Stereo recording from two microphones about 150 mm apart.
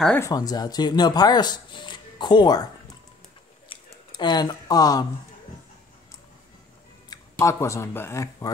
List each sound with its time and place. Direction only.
0.2 s speech: 25° left (ahead or behind)
3.6 s a sound: 35° left (ahead or behind)
7.3 s speech: 20° left (ahead or behind)